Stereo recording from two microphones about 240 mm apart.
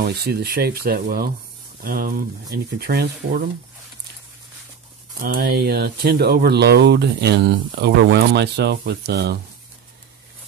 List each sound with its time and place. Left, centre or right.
0.0 s speech: right
5.2 s speech: right